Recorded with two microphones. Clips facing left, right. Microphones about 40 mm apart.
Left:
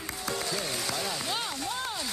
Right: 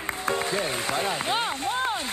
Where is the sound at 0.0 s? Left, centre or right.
Right.